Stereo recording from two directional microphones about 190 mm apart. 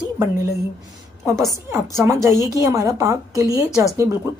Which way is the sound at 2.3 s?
20° left (ahead or behind).